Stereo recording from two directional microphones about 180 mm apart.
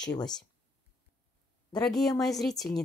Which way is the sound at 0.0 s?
20° left (ahead or behind).